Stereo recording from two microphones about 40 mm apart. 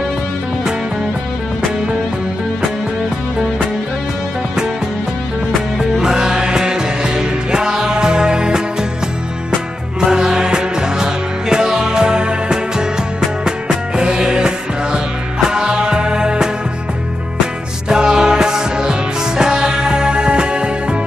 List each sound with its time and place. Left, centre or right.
5.8 s music: centre
9.9 s music: centre
17.8 s music: centre